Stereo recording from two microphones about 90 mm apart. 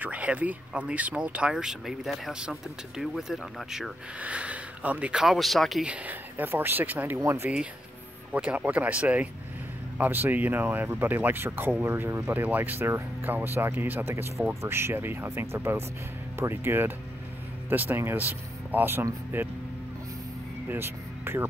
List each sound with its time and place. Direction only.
0.0 s speech: 15° right (ahead or behind)
4.2 s speech: 15° right (ahead or behind)
5.2 s speech: centre (ahead or behind)
5.9 s speech: 20° right (ahead or behind)
7.2 s speech: 30° right (ahead or behind)
8.3 s speech: 15° right (ahead or behind)
20.6 s speech: 25° right (ahead or behind)